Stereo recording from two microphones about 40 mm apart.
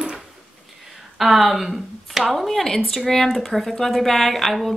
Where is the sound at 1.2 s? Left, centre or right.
Centre.